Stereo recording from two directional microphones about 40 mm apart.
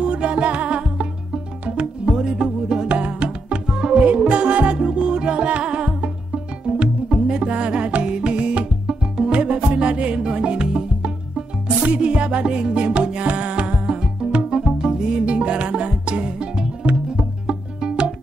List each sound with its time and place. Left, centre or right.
0.0 s music: right
1.8 s music: right
8.8 s music: centre
9.3 s music: right